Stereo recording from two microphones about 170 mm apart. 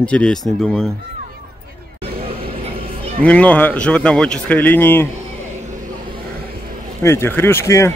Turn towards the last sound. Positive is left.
turn(degrees=15)  # may be behind; listen again after turning